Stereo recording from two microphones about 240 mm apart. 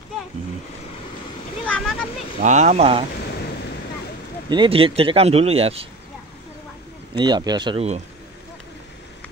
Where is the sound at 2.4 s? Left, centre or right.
Right.